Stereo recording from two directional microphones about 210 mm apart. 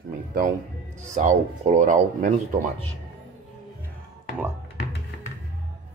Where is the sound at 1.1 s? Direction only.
35° right (ahead or behind).